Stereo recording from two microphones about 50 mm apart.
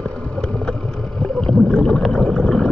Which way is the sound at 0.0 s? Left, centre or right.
Left.